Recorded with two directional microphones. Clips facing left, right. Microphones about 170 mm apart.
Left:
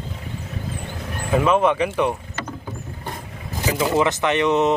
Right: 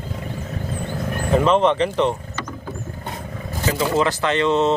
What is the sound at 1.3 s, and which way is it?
Speech, 10° left (ahead or behind).